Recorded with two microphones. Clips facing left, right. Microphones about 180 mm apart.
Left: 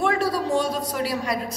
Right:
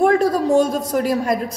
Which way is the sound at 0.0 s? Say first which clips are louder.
Right 7 dB; 45° right (ahead or behind).